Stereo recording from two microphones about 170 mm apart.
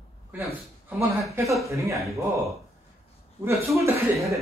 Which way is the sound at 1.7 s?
20° right (ahead or behind).